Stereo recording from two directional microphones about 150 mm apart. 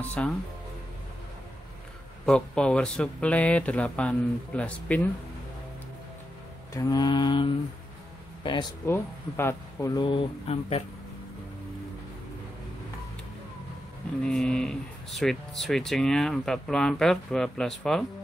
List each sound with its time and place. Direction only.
0.0 s speech: 10° left (ahead or behind)
2.2 s speech: 5° left (ahead or behind)
6.7 s speech: 25° left (ahead or behind)
8.8 s speech: 15° left (ahead or behind); by 10.8 s 40° left (ahead or behind)
14.2 s speech: 5° left (ahead or behind)